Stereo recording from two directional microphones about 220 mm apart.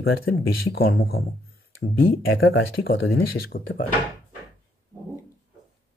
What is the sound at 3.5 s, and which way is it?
Speech, 40° left (ahead or behind).